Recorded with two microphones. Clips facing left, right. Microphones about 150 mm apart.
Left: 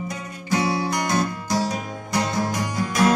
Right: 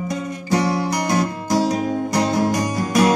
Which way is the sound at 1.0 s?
25° right (ahead or behind).